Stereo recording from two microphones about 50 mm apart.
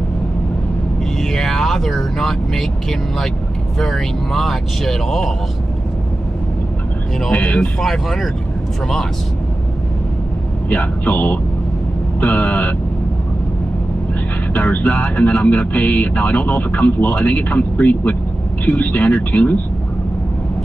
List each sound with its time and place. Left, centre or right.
1.1 s speech: centre
7.4 s speech: left
7.8 s speech: centre
10.7 s speech: left
14.5 s speech: left